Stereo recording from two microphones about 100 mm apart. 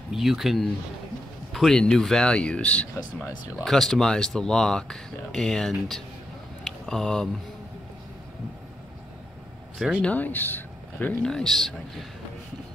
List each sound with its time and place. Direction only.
0.1 s speech: 5° right (ahead or behind)
6.6 s a sound: 5° left (ahead or behind)
9.8 s speech: 10° right (ahead or behind)
10.0 s speech: 15° left (ahead or behind)
11.2 s speech: 5° left (ahead or behind)